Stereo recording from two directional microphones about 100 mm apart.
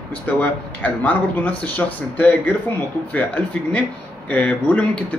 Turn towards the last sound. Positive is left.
turn(degrees=15)  # may be behind; listen again after turning